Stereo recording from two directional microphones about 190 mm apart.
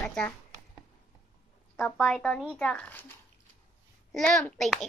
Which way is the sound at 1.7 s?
10° left (ahead or behind).